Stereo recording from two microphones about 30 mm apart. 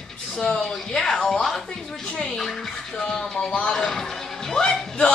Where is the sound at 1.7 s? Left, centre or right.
Left.